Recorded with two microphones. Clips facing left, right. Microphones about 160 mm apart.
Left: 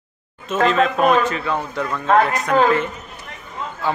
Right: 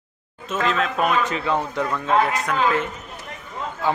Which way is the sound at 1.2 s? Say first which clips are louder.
Left 1 dB; 20° right (ahead or behind).